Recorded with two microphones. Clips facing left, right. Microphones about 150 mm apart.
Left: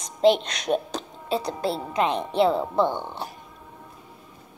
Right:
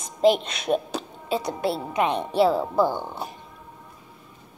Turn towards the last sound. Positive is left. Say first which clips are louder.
# right 1 dB
turn(degrees=-5)  # may be behind; listen again after turning